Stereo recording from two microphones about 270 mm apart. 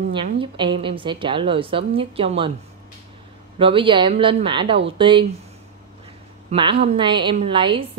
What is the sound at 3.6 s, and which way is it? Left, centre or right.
A woman's voice, centre.